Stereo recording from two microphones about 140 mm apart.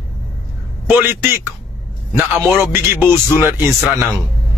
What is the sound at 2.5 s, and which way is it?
Speech, 15° right (ahead or behind).